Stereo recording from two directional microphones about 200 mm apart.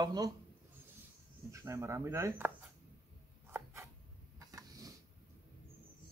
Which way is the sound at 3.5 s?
10° right (ahead or behind).